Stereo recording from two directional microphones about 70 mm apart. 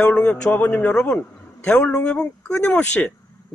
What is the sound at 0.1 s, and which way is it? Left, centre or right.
A man's voice, centre.